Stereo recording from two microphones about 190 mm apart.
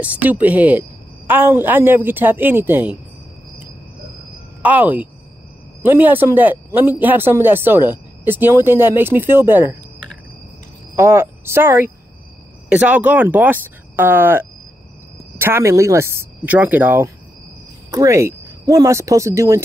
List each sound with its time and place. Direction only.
0.0 s a woman's voice: 10° right (ahead or behind)
4.6 s a woman's voice: 10° right (ahead or behind)
11.0 s a woman's voice: 15° right (ahead or behind)